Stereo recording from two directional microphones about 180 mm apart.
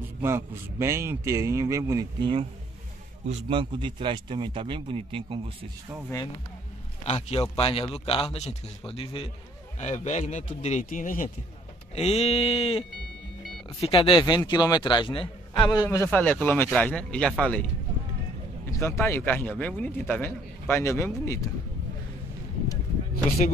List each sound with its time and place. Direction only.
0.2 s a man's voice: 15° right (ahead or behind)
7.1 s a man's voice: 35° left (ahead or behind)
11.9 s a man's voice: 35° left (ahead or behind); by 17.6 s 5° left (ahead or behind)
18.7 s a man's voice: 15° left (ahead or behind)